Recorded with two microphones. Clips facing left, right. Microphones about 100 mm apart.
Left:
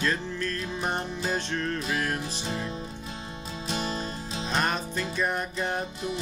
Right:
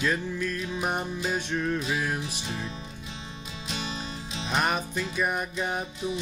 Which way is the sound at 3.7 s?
40° left (ahead or behind).